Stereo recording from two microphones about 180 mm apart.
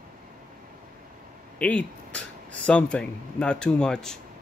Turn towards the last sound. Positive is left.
turn(degrees=5)  # may be behind; listen again after turning